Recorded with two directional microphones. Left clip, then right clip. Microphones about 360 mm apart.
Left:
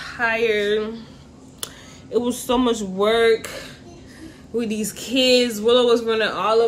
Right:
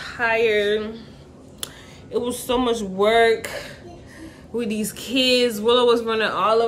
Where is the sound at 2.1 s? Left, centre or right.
Centre.